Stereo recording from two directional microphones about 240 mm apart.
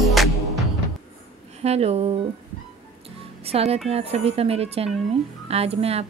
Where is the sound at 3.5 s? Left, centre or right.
Right.